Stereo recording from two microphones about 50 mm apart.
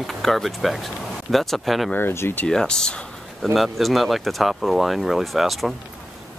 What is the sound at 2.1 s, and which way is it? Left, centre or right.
Speech, left.